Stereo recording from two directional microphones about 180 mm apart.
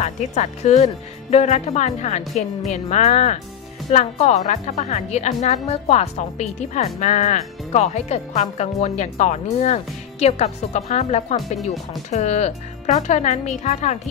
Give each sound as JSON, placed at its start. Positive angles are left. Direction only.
{"t": 0.0, "sound": "a woman's voice", "side_deg": 40}